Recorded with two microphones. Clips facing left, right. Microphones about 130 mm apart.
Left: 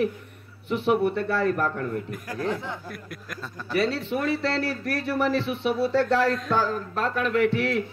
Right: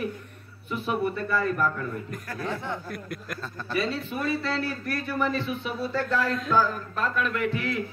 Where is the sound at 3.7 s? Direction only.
80° left.